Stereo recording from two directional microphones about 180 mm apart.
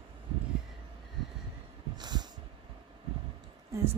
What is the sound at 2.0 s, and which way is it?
Heart sounds, 25° right (ahead or behind).